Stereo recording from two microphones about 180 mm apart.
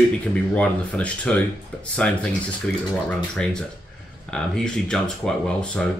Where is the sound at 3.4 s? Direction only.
5° left (ahead or behind).